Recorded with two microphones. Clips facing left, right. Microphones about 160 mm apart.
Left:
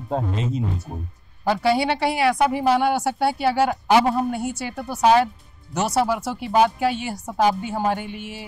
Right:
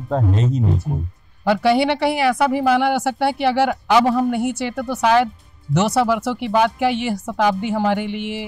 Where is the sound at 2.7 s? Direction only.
75° right (ahead or behind).